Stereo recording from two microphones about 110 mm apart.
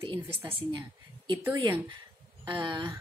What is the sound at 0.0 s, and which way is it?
Speech, 50° right (ahead or behind).